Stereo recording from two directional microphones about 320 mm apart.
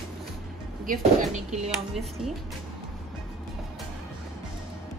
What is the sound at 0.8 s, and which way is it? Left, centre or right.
Speech, right.